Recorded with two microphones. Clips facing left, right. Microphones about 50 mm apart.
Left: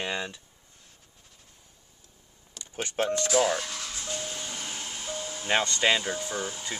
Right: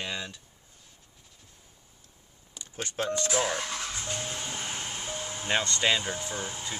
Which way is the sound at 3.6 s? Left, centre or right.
Right.